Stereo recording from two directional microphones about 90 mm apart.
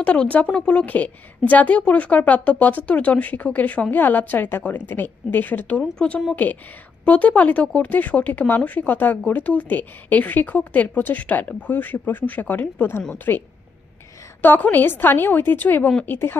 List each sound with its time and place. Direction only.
0.0 s a woman's voice: 15° left (ahead or behind)
14.4 s a woman's voice: 20° left (ahead or behind)